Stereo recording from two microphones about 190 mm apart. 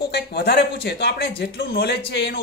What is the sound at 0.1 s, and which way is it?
Speech, 60° left (ahead or behind).